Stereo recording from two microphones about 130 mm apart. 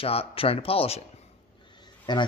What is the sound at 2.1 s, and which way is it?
Speech, 35° left (ahead or behind).